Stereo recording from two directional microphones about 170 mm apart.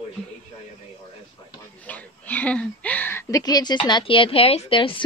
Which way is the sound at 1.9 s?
10° left (ahead or behind).